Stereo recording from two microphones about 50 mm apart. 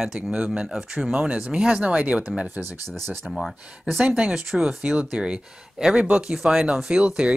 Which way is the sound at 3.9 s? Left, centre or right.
Centre.